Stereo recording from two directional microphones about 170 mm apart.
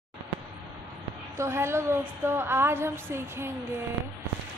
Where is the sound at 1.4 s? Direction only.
15° right (ahead or behind).